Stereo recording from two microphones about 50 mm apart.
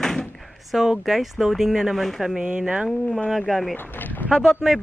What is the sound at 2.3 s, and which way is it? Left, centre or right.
Speech, centre.